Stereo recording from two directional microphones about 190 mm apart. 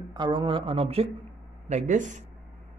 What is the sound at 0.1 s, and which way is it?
A man's voice, 25° right (ahead or behind).